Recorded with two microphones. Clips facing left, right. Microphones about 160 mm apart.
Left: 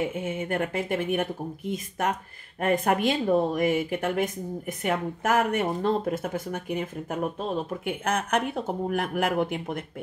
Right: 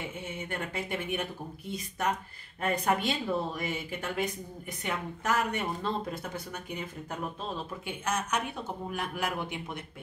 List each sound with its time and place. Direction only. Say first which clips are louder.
0.0 s speech: left 9 dB; 50° left (ahead or behind)
2.6 s speech: left 5 dB; 50° left (ahead or behind)